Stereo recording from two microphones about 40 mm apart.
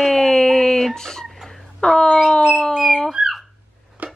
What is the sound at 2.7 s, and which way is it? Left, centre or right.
Dog, centre.